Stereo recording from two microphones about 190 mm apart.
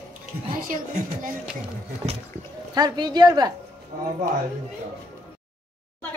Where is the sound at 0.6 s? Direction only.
45° right (ahead or behind).